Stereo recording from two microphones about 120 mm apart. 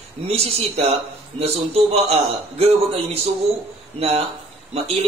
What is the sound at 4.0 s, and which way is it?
Speech, 55° right (ahead or behind).